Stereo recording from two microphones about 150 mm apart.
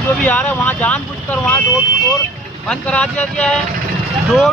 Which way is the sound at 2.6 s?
5° left (ahead or behind).